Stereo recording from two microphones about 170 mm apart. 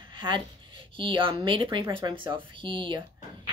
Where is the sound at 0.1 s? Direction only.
30° right (ahead or behind).